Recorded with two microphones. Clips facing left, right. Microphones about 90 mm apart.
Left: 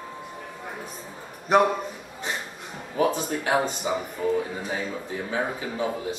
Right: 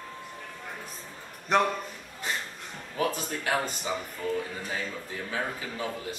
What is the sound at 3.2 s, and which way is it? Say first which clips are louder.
Speech: left 5 dB; 15° left (ahead or behind).